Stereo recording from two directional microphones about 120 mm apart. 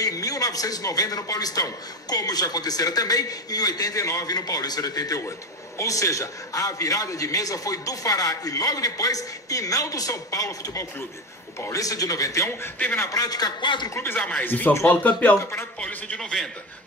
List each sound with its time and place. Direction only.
0.0 s a man's voice: 30° left (ahead or behind)
13.9 s a man's voice: 20° left (ahead or behind)
16.2 s a man's voice: 5° left (ahead or behind)